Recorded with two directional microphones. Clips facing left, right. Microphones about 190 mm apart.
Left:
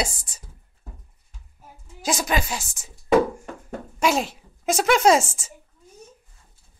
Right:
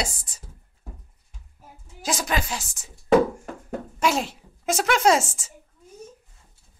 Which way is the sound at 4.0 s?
15° left (ahead or behind).